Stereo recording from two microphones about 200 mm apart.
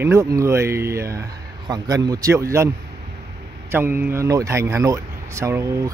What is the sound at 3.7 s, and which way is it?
Speech, 10° right (ahead or behind).